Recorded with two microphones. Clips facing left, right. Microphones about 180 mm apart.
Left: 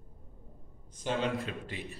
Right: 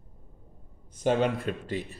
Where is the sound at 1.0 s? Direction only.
50° right (ahead or behind).